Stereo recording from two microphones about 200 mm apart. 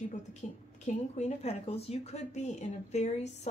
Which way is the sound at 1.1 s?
30° left (ahead or behind).